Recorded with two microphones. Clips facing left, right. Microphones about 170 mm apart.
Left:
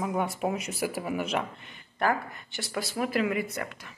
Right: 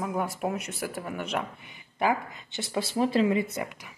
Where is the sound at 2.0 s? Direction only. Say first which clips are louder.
Right 1 dB; 15° right (ahead or behind).